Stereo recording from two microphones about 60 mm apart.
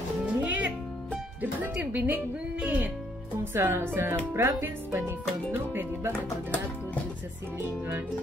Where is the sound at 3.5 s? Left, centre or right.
Right.